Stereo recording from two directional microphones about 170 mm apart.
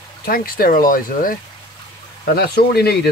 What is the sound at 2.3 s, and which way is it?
Speech, 65° left (ahead or behind).